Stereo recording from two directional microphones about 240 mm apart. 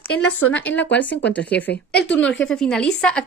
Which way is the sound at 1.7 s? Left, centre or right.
Left.